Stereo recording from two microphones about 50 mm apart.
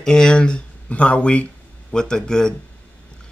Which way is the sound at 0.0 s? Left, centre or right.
Centre.